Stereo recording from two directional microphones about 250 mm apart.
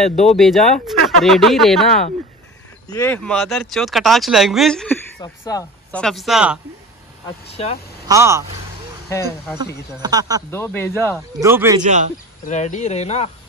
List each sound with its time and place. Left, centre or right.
0.1 s speech: left
0.4 s speech: centre
2.9 s speech: centre
5.2 s speech: centre
7.5 s speech: left
8.1 s speech: centre
9.9 s speech: centre
10.5 s speech: centre
11.4 s speech: centre
11.8 s speech: right
12.4 s speech: left